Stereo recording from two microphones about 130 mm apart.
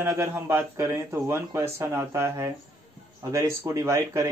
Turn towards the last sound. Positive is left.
turn(degrees=-20)  # may be behind; listen again after turning